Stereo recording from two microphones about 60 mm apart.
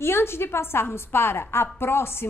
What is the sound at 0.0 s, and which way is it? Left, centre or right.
A woman's voice, left.